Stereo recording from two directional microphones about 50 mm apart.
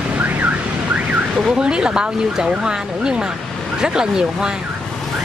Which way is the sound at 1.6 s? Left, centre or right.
Centre.